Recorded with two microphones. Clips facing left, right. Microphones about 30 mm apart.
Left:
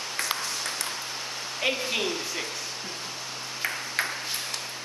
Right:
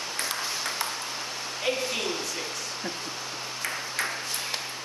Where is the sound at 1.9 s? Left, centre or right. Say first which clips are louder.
Left 2 dB; centre.